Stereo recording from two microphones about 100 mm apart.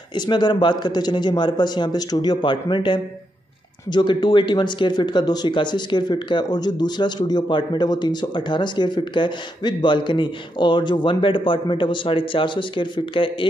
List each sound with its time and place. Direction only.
0.3 s speech: 50° left (ahead or behind)